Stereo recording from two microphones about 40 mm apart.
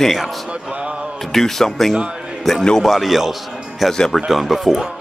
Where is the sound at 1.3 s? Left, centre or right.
Centre.